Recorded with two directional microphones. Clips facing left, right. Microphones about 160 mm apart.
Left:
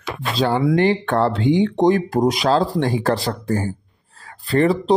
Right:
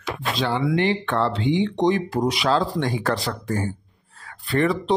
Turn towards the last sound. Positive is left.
turn(degrees=35)  # may be behind; listen again after turning